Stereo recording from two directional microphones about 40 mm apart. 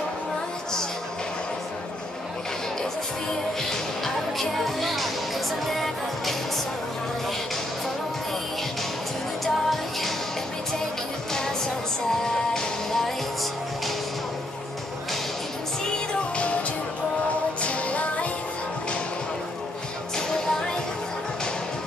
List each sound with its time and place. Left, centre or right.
3.7 s music: centre
9.4 s music: centre
12.2 s music: centre
17.6 s music: left
20.2 s music: centre